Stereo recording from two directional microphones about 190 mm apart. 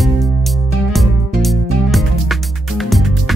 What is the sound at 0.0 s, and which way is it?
Music, centre (ahead or behind).